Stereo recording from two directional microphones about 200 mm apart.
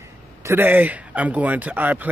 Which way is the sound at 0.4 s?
10° right (ahead or behind).